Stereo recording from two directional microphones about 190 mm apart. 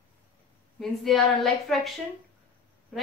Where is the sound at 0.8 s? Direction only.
Centre (ahead or behind).